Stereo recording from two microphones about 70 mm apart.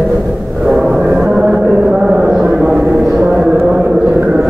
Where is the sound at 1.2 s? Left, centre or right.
Centre.